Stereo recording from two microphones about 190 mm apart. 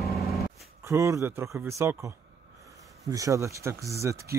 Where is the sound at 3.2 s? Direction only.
15° right (ahead or behind).